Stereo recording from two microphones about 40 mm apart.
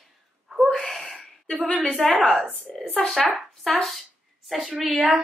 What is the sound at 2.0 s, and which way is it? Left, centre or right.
Speech, centre.